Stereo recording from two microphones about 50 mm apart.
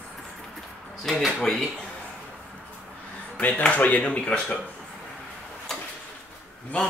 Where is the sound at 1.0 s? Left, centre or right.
Centre.